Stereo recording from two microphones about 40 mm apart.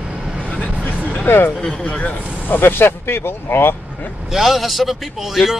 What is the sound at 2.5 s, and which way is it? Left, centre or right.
Speech, left.